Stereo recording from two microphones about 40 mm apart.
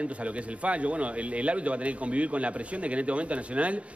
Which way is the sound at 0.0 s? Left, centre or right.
Right.